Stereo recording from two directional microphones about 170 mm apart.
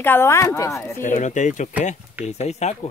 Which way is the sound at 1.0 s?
45° left (ahead or behind).